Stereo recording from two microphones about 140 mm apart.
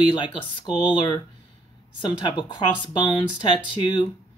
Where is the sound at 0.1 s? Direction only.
35° left (ahead or behind).